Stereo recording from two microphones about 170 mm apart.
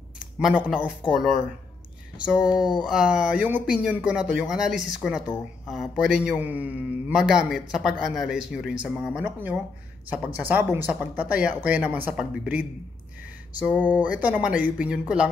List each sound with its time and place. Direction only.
0.4 s speech: 5° right (ahead or behind)
2.8 s speech: 5° right (ahead or behind)
13.7 s speech: 10° right (ahead or behind)